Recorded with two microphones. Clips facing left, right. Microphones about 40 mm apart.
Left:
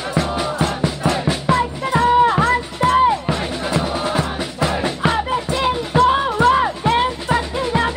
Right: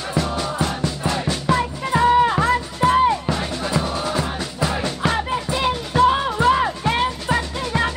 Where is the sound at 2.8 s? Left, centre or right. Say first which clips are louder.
Left 2 dB; centre.